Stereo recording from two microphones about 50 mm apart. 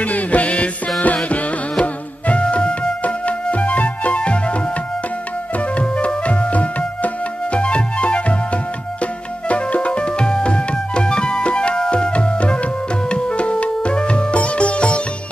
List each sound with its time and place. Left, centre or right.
0.0 s music: left
5.8 s music: left
13.1 s sitar: left